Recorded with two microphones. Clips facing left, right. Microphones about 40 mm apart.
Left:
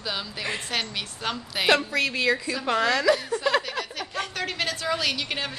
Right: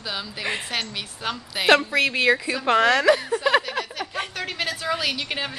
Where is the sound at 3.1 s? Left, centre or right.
Centre.